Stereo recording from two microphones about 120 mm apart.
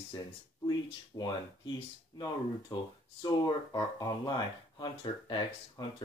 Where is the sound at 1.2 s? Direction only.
35° left (ahead or behind).